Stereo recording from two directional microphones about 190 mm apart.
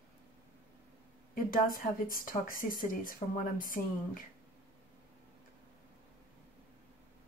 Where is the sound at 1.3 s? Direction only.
45° left (ahead or behind).